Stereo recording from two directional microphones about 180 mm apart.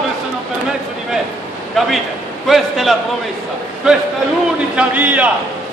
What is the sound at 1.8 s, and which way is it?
A man's voice, centre (ahead or behind).